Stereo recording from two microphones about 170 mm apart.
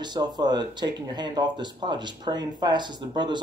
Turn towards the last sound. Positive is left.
turn(degrees=-25)  # may be behind; listen again after turning